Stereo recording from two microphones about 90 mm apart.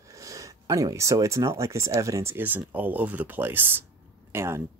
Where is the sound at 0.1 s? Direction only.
35° right (ahead or behind).